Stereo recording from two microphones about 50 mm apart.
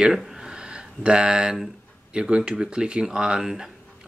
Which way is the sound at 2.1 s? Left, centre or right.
Centre.